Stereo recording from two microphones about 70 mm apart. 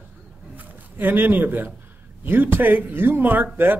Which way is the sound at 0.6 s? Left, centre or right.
Right.